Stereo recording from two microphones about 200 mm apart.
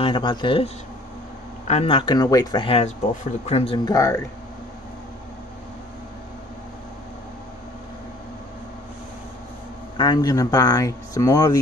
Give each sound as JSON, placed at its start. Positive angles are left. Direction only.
{"t": 0.0, "sound": "speech", "side_deg": 25}
{"t": 1.7, "sound": "speech", "side_deg": 30}
{"t": 9.9, "sound": "speech", "side_deg": 20}